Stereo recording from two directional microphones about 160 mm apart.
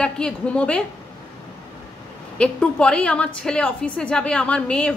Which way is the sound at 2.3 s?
5° left (ahead or behind).